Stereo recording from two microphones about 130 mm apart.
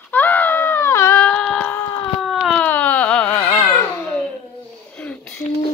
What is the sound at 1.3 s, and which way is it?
Child singing, 5° left (ahead or behind).